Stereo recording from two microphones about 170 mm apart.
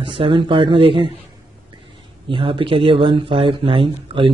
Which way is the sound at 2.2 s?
30° right (ahead or behind).